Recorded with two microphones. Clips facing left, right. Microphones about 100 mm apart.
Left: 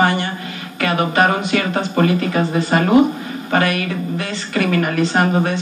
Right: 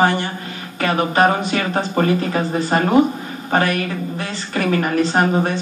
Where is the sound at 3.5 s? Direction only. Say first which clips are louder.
Even; 35° right (ahead or behind).